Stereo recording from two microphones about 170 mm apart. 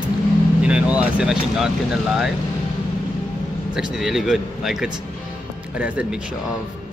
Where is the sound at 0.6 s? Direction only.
5° right (ahead or behind).